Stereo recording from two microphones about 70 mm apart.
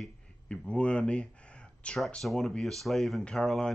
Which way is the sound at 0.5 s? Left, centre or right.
Centre.